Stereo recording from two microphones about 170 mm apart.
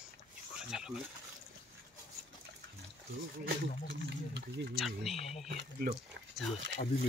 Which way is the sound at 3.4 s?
90° right.